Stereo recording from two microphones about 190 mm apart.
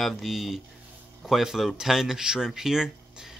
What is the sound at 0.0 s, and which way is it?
Speech, centre (ahead or behind).